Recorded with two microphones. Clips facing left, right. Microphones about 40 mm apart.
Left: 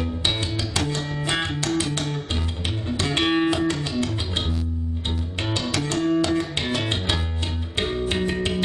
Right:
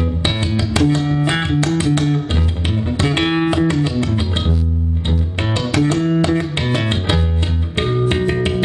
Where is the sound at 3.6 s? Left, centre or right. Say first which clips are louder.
Right 7 dB; right.